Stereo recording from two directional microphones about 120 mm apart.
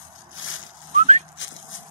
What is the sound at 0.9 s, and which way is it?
Dog, 75° right (ahead or behind).